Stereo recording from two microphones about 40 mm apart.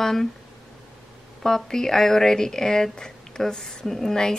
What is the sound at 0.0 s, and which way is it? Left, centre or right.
Speech, centre.